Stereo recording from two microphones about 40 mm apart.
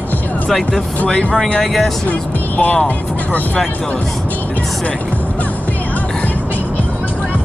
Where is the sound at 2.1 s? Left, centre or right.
Left.